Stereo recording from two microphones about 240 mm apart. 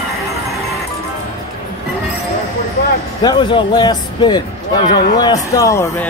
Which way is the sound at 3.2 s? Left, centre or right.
Centre.